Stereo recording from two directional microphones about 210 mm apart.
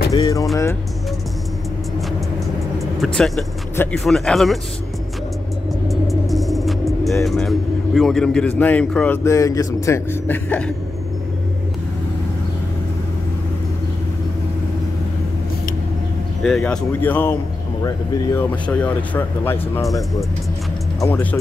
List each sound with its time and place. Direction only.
0.1 s speech: 15° left (ahead or behind)
3.0 s speech: centre (ahead or behind)
5.9 s music: centre (ahead or behind)
7.2 s speech: centre (ahead or behind)
16.4 s speech: 5° left (ahead or behind)
21.0 s speech: 10° left (ahead or behind)